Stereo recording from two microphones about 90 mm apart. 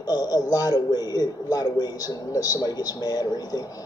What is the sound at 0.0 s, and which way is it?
A man's voice, 45° left (ahead or behind).